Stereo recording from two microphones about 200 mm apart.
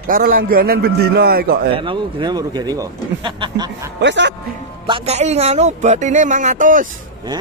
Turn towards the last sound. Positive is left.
turn(degrees=-40)  # may be behind; listen again after turning